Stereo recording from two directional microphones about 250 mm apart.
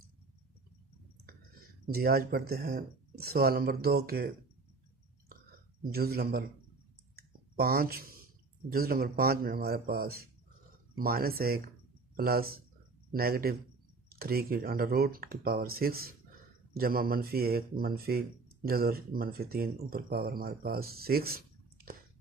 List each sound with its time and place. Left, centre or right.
1.9 s speech: right
5.9 s speech: right
7.5 s speech: right